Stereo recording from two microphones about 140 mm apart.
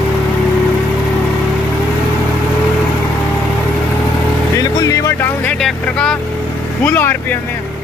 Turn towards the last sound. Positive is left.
turn(degrees=15)  # may be behind; listen again after turning